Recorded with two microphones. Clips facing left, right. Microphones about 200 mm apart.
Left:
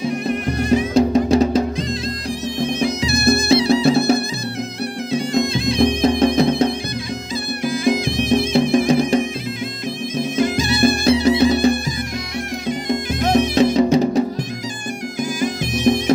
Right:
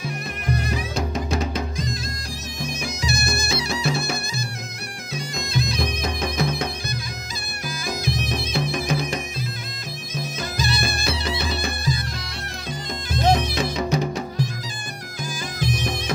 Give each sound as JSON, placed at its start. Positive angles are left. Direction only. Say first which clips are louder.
{"t": 0.7, "sound": "music", "louder": "left 12 dB", "side_deg": 30}
{"t": 3.3, "sound": "music", "louder": "left 13 dB", "side_deg": 30}
{"t": 5.1, "sound": "music", "louder": "left 9 dB", "side_deg": 25}
{"t": 15.4, "sound": "music", "louder": "left 10 dB", "side_deg": 20}